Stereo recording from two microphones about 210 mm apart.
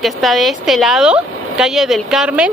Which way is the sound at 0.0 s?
Centre (ahead or behind).